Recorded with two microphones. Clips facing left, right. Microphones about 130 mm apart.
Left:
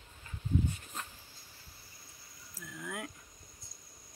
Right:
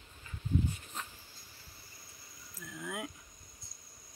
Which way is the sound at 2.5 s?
5° right (ahead or behind).